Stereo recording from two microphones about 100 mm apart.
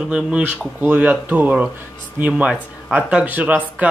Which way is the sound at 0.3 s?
10° right (ahead or behind).